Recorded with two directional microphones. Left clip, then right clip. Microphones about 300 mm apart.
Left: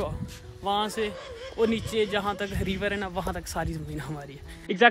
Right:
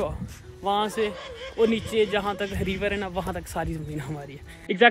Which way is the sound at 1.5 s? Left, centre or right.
Centre.